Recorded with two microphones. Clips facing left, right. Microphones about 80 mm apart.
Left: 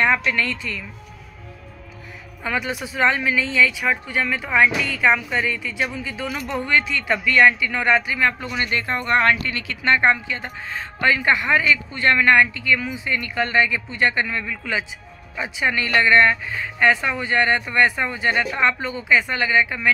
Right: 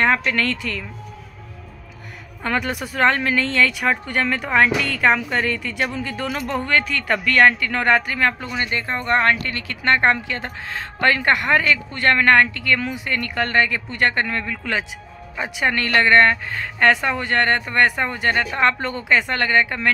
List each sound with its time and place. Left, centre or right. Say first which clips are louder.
0.0 s speech: right 1 dB; right
2.4 s speech: right 2 dB; right